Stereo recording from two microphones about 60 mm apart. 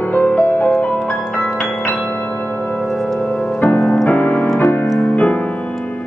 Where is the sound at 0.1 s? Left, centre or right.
Left.